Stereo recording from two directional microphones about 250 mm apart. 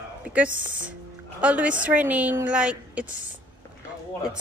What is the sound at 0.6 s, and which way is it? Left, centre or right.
Speech, right.